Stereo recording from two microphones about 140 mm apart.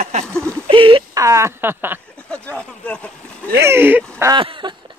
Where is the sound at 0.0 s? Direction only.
50° right (ahead or behind).